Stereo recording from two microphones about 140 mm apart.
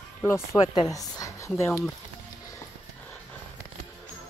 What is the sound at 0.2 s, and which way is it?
A woman's voice, 15° left (ahead or behind).